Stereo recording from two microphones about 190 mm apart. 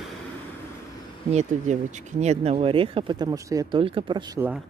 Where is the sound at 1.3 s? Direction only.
40° right (ahead or behind).